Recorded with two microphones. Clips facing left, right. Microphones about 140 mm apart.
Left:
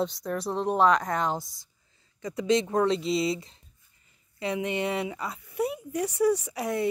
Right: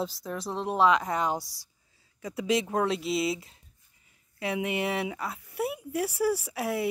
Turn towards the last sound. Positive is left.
turn(degrees=-5)  # may be behind; listen again after turning